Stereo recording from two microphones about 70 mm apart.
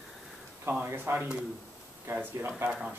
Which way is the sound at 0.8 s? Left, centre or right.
Right.